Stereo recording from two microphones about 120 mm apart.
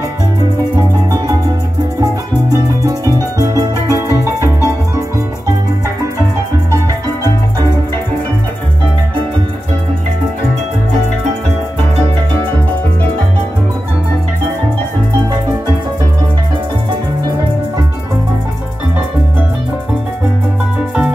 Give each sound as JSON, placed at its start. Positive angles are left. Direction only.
{"t": 2.5, "sound": "music", "side_deg": -30}